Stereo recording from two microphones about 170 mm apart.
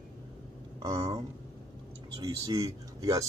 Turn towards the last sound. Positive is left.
turn(degrees=-20)  # may be behind; listen again after turning